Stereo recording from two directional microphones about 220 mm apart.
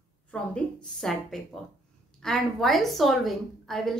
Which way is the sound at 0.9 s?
Centre (ahead or behind).